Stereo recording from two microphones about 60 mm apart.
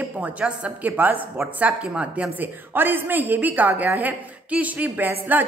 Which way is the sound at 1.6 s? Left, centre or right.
Centre.